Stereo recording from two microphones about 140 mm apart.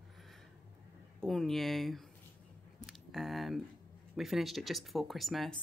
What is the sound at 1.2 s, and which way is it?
Speech, centre (ahead or behind).